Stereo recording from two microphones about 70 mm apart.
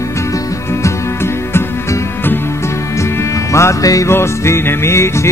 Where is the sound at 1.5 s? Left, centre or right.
Left.